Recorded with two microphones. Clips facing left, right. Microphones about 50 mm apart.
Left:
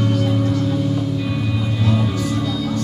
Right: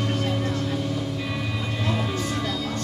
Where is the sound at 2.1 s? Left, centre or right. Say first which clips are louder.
Left 5 dB; right.